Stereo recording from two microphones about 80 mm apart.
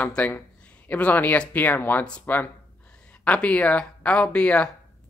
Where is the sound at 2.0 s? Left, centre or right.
Centre.